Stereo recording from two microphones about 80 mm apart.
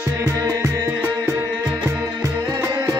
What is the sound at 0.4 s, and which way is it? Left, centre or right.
Music, right.